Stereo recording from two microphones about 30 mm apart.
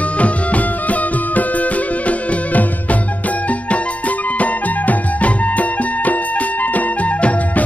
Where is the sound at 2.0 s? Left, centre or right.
Left.